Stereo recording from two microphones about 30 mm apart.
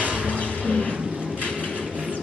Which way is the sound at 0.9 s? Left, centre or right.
Right.